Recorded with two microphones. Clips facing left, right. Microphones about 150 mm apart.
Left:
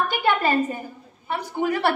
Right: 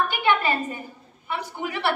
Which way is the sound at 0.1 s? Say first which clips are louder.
Left 1 dB; 40° left (ahead or behind).